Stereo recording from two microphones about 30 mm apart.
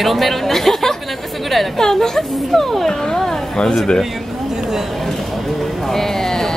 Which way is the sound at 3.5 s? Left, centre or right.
Left.